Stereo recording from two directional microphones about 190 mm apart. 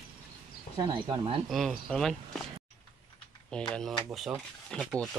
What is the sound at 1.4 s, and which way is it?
Speech, centre (ahead or behind).